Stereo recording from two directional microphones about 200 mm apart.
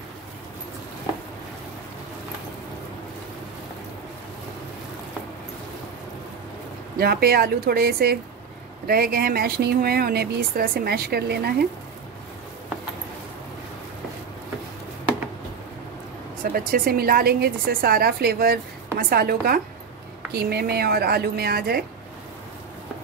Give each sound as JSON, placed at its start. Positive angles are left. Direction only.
{"t": 7.0, "sound": "speech", "side_deg": -50}
{"t": 16.4, "sound": "speech", "side_deg": -45}